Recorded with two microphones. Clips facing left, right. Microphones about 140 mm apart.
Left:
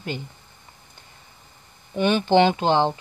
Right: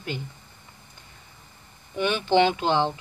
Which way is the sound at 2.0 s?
35° left (ahead or behind).